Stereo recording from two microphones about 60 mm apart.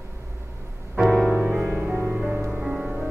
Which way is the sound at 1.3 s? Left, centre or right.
Right.